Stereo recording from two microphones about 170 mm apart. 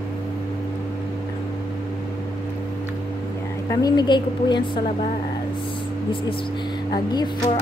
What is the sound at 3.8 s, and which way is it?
A woman's voice, 25° left (ahead or behind).